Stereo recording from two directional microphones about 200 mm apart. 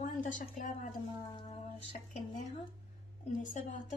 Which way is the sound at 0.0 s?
40° left (ahead or behind).